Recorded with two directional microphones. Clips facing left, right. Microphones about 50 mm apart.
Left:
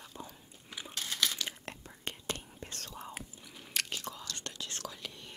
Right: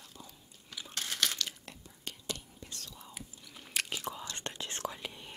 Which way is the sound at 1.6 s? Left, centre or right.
Left.